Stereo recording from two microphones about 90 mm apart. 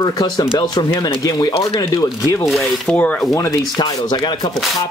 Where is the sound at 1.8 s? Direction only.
45° left (ahead or behind).